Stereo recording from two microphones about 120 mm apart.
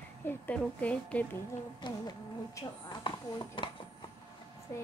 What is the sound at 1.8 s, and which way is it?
Speech, 40° left (ahead or behind).